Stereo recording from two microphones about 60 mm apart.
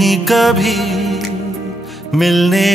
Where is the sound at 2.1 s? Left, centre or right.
Centre.